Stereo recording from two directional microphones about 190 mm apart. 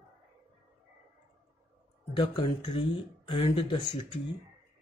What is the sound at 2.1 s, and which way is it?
Speech, 25° left (ahead or behind).